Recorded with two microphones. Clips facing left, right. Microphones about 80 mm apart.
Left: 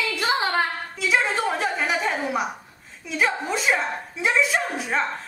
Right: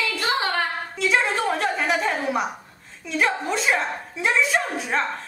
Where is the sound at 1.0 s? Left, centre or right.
Centre.